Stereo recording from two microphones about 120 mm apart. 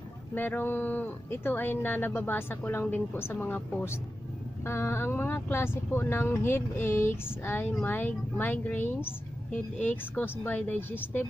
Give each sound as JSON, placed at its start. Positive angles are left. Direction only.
{"t": 0.3, "sound": "speech", "side_deg": 15}